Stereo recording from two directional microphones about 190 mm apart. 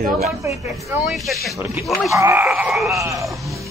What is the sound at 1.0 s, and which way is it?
Speech, centre (ahead or behind).